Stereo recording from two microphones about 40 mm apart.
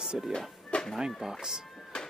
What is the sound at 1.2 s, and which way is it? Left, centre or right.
Speech, centre.